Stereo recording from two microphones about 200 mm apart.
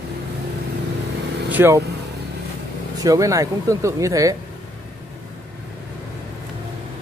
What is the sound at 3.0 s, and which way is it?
Speech, 15° right (ahead or behind).